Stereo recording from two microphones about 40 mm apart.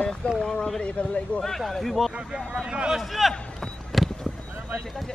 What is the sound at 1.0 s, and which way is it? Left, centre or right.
Speech, left.